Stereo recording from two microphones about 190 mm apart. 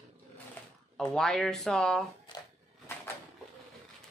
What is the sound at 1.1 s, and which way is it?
Speech, centre (ahead or behind).